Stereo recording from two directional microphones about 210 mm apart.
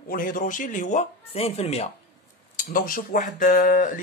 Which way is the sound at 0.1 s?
40° left (ahead or behind).